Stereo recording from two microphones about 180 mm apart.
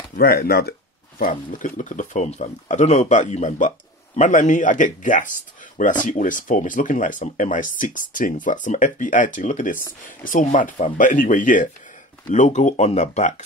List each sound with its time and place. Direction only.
0.2 s speech: 60° left (ahead or behind); by 13.4 s 40° left (ahead or behind)